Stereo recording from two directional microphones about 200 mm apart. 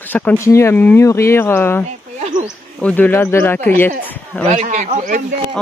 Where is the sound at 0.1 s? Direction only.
10° left (ahead or behind).